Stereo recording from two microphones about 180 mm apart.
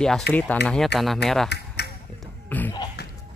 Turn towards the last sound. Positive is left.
turn(degrees=60)  # may be behind; listen again after turning